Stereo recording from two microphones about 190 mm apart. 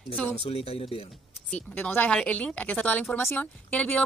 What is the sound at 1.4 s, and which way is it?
Speech, 5° left (ahead or behind).